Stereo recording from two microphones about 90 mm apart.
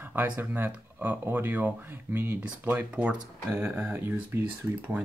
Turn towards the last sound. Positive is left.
turn(degrees=-20)  # may be behind; listen again after turning